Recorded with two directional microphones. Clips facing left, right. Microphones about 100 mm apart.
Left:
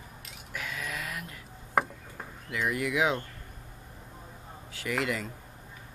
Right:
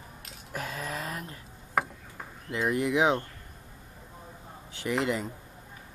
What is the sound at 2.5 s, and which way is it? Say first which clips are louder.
Speech: right 3 dB; 25° right (ahead or behind).